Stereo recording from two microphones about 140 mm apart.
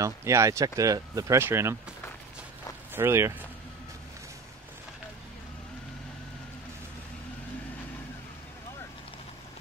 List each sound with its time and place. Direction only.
0.0 s speech: 20° right (ahead or behind)
2.9 s speech: 15° right (ahead or behind)